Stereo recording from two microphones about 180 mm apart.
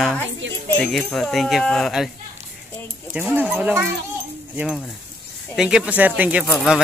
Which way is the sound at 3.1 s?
10° right (ahead or behind).